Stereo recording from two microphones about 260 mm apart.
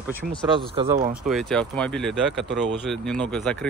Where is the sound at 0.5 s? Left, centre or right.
Centre.